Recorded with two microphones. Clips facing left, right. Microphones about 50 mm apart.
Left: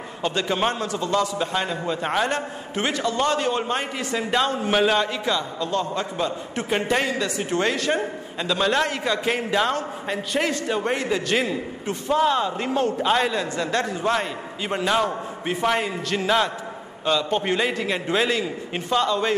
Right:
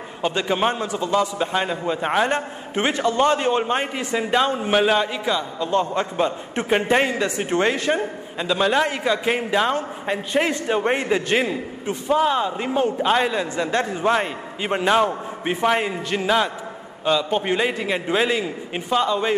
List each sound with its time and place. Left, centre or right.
0.2 s a man's voice: centre
5.7 s a man's voice: right
7.9 s a man's voice: centre